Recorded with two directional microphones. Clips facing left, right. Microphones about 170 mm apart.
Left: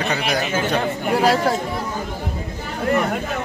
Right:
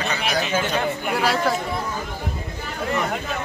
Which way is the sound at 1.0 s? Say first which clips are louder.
Left 7 dB; 35° left (ahead or behind).